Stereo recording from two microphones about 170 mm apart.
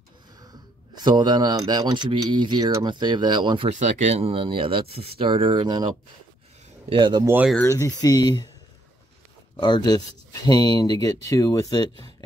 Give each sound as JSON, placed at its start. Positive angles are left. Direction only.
{"t": 0.4, "sound": "speech", "side_deg": -25}
{"t": 3.8, "sound": "speech", "side_deg": -40}
{"t": 6.9, "sound": "speech", "side_deg": -25}
{"t": 7.2, "sound": "speech", "side_deg": -10}
{"t": 7.7, "sound": "speech", "side_deg": 20}
{"t": 9.6, "sound": "speech", "side_deg": 25}